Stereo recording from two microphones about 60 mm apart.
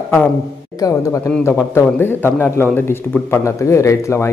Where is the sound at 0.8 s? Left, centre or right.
Left.